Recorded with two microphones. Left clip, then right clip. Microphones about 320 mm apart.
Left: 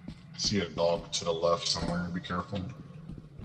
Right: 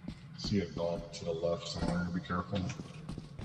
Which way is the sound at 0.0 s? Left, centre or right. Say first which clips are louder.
Left 10 dB; centre.